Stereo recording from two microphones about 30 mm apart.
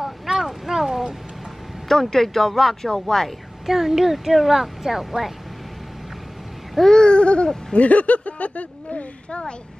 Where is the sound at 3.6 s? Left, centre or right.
Centre.